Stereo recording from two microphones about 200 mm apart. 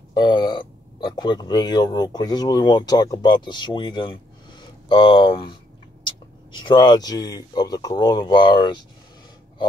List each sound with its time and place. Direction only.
0.1 s speech: 20° left (ahead or behind)